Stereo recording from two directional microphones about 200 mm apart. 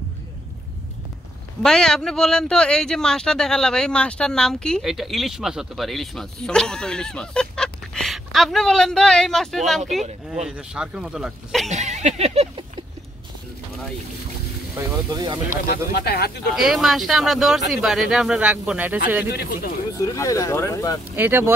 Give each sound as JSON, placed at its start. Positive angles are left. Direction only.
{"t": 1.6, "sound": "a man's voice", "side_deg": 5}
{"t": 11.7, "sound": "a sound", "side_deg": -35}
{"t": 14.8, "sound": "speech", "side_deg": -20}
{"t": 15.7, "sound": "speech", "side_deg": 55}
{"t": 16.5, "sound": "a man's voice", "side_deg": 0}
{"t": 19.3, "sound": "speech", "side_deg": 50}
{"t": 20.0, "sound": "speech", "side_deg": 15}
{"t": 21.2, "sound": "speech", "side_deg": -10}